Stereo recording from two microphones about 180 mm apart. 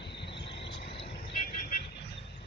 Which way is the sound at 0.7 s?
30° left (ahead or behind).